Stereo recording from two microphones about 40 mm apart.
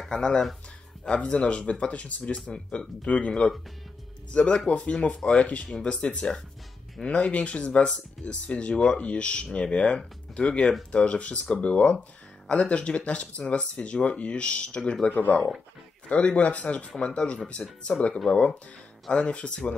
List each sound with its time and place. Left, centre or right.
0.0 s a sound: centre
1.1 s speech: left
15.1 s speech: left
16.1 s speech: left